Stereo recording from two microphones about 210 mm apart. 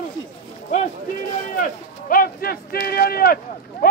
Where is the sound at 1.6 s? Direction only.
40° left (ahead or behind).